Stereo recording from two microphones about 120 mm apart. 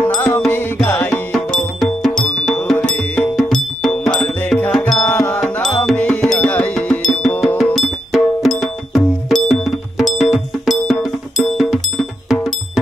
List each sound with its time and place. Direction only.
0.0 s music: 15° left (ahead or behind)